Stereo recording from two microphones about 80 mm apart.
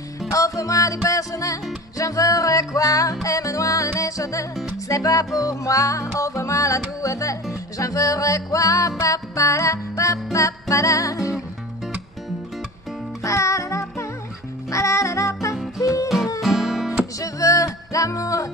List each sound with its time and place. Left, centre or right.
0.3 s music: left
13.2 s music: left
16.3 s music: centre
17.2 s music: left